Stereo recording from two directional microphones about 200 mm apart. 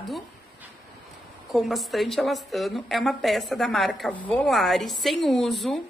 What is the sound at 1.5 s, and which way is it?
A woman's voice, centre (ahead or behind).